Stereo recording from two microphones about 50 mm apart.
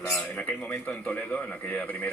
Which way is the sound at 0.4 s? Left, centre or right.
Left.